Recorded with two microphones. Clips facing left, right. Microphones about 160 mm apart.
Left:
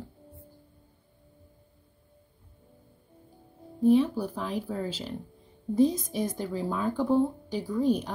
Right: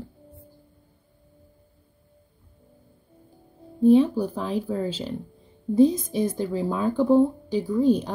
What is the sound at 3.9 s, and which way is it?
Speech, 25° right (ahead or behind).